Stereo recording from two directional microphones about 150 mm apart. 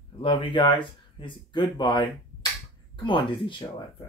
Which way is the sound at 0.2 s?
35° left (ahead or behind).